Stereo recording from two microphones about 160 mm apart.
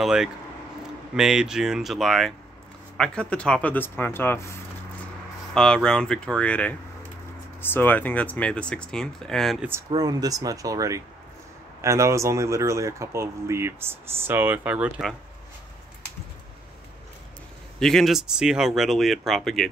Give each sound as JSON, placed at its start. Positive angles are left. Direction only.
{"t": 0.0, "sound": "speech", "side_deg": 0}
{"t": 5.5, "sound": "speech", "side_deg": 5}
{"t": 9.8, "sound": "speech", "side_deg": -25}
{"t": 17.7, "sound": "speech", "side_deg": 5}